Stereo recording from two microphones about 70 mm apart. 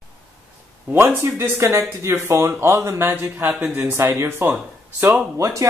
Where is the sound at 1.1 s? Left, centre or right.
Right.